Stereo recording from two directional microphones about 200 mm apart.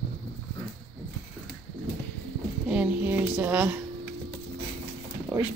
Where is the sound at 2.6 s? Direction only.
5° right (ahead or behind).